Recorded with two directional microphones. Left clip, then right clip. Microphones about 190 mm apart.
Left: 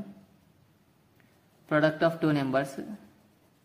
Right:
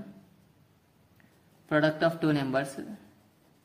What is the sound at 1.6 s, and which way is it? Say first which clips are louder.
A man's voice: left 1 dB; 10° left (ahead or behind).